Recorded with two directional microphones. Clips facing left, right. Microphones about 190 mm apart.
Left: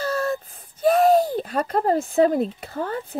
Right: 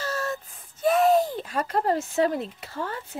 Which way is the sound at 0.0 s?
35° left (ahead or behind).